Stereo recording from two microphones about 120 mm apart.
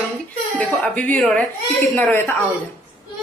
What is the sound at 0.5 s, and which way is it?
A woman's voice, 10° left (ahead or behind).